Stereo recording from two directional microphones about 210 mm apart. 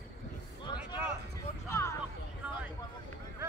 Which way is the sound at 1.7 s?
10° left (ahead or behind).